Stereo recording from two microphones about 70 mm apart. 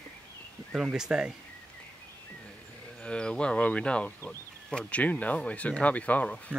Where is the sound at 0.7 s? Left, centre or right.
Centre.